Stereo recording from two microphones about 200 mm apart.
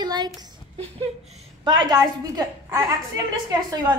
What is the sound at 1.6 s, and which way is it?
A woman's voice, 20° right (ahead or behind).